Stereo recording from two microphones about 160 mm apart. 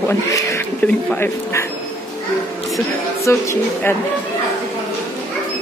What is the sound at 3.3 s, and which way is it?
Speech, 15° left (ahead or behind).